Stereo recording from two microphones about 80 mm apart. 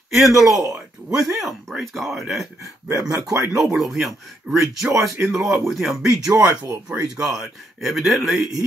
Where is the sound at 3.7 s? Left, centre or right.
Centre.